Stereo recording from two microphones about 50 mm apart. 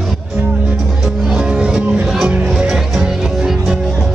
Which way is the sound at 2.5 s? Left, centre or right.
Centre.